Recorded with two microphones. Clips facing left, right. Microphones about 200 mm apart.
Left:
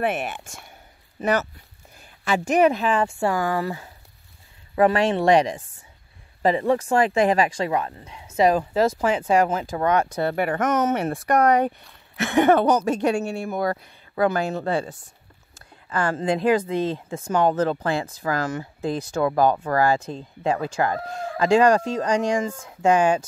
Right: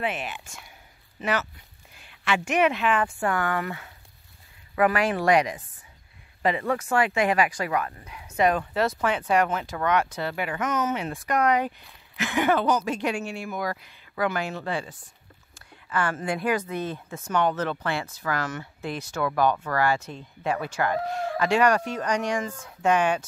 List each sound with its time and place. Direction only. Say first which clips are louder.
0.0 s speech: left 5 dB; 50° left (ahead or behind); by 10.0 s 30° left (ahead or behind)
10.2 s speech: left 6 dB; 50° left (ahead or behind)
12.7 s speech: left 5 dB; 45° left (ahead or behind)